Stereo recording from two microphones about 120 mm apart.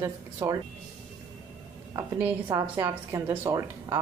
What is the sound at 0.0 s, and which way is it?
Speech, 30° right (ahead or behind).